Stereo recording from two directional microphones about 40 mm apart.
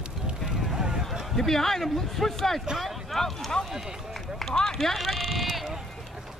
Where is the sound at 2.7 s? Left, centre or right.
Centre.